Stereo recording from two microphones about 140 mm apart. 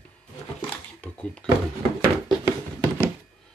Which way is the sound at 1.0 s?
10° left (ahead or behind).